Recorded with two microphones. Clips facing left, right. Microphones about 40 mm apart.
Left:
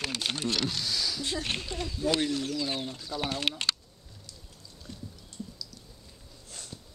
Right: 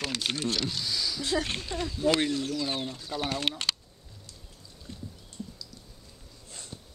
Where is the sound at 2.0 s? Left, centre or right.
Centre.